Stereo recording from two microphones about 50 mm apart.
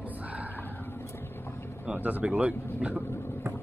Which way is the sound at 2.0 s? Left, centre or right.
Right.